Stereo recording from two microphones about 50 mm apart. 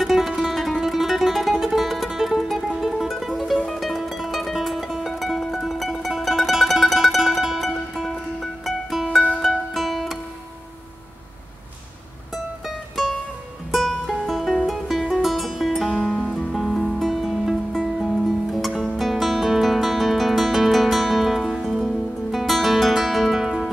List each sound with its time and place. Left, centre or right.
0.0 s music: centre
13.7 s music: centre
21.5 s music: centre
21.8 s guitar: centre